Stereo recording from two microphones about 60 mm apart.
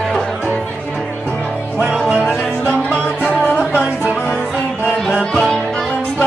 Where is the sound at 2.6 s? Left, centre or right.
Left.